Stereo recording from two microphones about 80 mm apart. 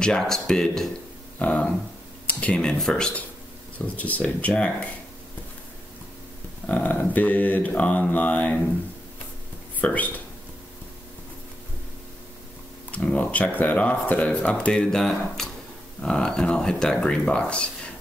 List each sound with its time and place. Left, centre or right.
0.0 s speech: centre
1.4 s speech: centre
6.7 s mantra: left
9.8 s mantra: centre
12.9 s speech: centre